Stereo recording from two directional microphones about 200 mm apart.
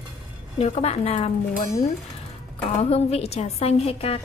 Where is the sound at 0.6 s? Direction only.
30° left (ahead or behind).